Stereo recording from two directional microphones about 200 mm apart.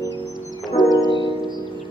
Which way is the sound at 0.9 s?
20° left (ahead or behind).